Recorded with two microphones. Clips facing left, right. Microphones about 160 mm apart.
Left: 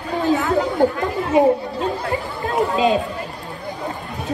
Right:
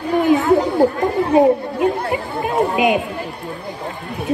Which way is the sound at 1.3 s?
20° right (ahead or behind).